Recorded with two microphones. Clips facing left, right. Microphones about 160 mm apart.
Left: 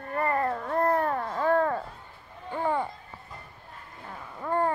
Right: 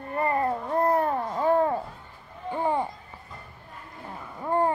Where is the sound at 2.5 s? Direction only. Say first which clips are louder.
Right 2 dB; 20° right (ahead or behind).